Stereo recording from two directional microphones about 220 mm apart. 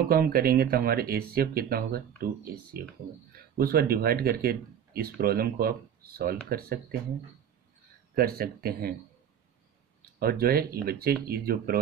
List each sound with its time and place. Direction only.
0.1 s speech: 45° right (ahead or behind)
8.1 s speech: 45° right (ahead or behind)
10.1 s speech: 45° right (ahead or behind)